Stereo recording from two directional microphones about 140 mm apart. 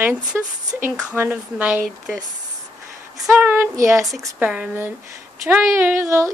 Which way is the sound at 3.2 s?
10° right (ahead or behind).